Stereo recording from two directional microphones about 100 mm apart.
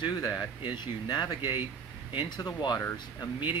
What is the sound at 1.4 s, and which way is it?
Speech, 20° right (ahead or behind).